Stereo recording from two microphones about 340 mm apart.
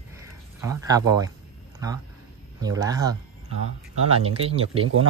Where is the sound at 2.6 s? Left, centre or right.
Centre.